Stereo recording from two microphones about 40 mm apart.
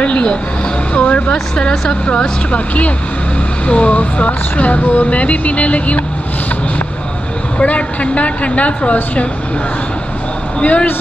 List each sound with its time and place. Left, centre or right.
0.0 s a sound: left
0.9 s speech: left
7.5 s speech: left
10.6 s speech: left